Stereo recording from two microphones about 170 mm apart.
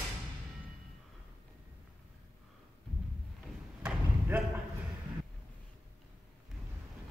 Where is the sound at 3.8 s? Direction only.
10° right (ahead or behind).